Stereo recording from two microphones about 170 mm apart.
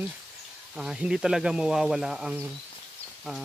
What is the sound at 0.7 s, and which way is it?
Speech, 5° right (ahead or behind).